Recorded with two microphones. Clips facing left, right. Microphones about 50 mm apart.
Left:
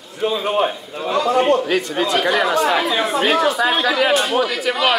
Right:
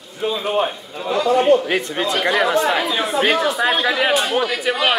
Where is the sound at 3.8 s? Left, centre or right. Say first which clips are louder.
Left 1 dB; centre.